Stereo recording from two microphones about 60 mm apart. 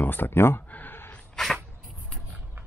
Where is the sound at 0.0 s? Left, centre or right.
Left.